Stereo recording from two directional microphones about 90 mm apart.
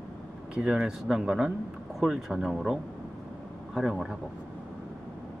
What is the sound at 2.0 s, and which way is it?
Speech, 5° right (ahead or behind).